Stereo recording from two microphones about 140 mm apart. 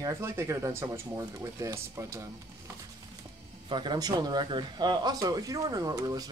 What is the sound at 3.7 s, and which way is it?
Speech, 30° right (ahead or behind).